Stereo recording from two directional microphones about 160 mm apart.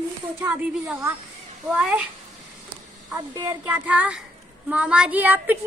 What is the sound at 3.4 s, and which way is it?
Speech, 15° right (ahead or behind).